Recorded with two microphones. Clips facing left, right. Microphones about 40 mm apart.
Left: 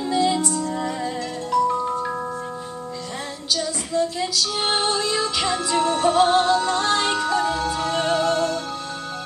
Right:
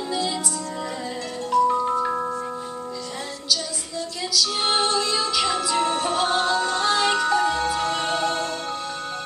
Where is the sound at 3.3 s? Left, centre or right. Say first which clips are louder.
Left 2 dB; left.